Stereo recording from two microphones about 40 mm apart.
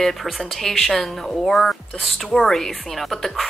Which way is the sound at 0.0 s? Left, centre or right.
Centre.